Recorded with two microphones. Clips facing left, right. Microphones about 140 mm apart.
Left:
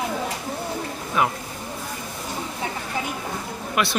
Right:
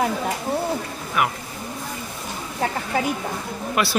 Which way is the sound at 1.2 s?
25° left (ahead or behind).